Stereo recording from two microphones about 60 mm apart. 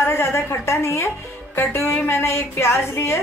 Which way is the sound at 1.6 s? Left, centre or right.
Left.